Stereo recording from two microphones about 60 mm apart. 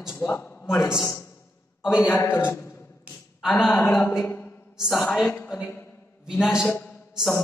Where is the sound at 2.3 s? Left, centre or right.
Left.